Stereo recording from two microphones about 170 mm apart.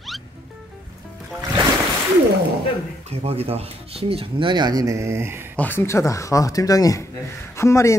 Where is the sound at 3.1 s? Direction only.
35° right (ahead or behind); by 5.4 s 15° right (ahead or behind).